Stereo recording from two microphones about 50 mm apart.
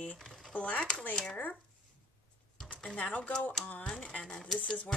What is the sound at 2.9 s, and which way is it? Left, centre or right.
Speech, left.